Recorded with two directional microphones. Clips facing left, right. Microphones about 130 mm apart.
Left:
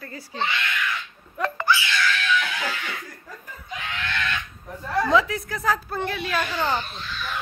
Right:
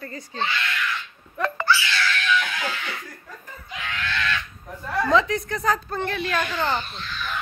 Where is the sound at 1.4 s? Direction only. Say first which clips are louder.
Right 1 dB; 15° left (ahead or behind).